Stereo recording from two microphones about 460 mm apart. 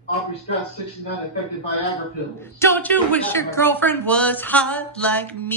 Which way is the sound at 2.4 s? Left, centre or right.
Centre.